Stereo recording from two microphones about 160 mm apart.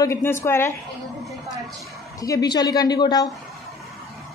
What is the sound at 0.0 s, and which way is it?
Speech, 15° left (ahead or behind).